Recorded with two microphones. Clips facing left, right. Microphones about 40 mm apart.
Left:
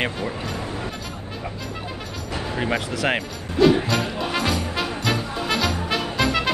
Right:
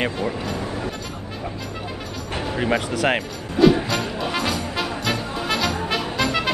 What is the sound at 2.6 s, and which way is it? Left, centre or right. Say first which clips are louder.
Speech: right 3 dB; centre.